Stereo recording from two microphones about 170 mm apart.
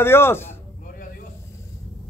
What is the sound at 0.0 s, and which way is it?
Speech, 15° left (ahead or behind).